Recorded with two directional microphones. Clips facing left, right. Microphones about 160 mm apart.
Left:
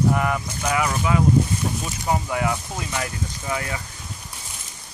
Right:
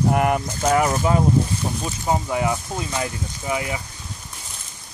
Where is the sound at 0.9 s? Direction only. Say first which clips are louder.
Right 2 dB; 35° right (ahead or behind).